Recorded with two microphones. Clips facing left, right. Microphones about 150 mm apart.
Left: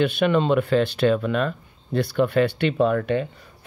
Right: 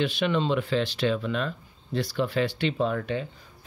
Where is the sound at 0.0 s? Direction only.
55° left (ahead or behind).